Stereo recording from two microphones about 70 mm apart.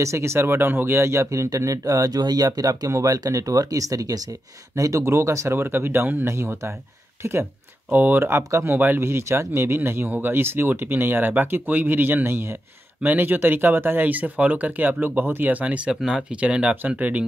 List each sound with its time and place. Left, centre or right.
0.0 s speech: right
5.0 s speech: right
6.2 s speech: right
7.9 s speech: right